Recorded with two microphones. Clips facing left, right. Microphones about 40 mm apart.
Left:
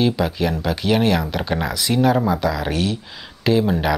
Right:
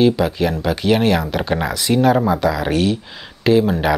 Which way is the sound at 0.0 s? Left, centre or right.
Centre.